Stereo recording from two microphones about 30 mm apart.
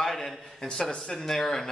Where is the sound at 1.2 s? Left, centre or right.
Centre.